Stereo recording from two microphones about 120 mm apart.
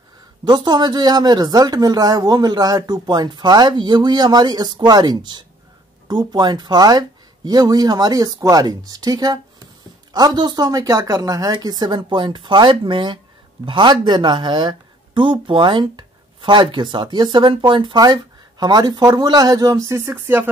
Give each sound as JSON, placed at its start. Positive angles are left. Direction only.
{"t": 0.5, "sound": "speech", "side_deg": -35}